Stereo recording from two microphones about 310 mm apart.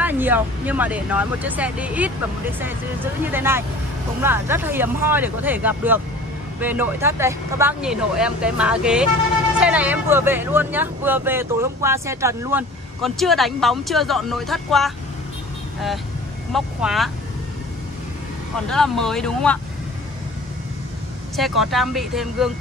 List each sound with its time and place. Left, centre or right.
0.0 s speech: centre
16.5 s speech: centre
18.7 s speech: centre
21.4 s speech: centre